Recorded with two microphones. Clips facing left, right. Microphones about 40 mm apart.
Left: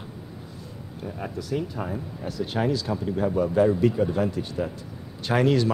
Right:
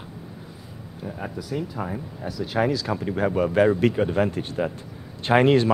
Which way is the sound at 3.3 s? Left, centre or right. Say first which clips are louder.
Right 2 dB; right.